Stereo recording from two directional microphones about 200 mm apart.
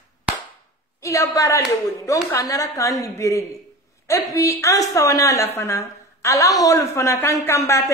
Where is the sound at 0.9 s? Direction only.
15° left (ahead or behind).